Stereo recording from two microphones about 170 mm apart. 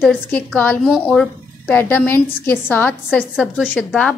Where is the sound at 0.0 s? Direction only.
10° left (ahead or behind).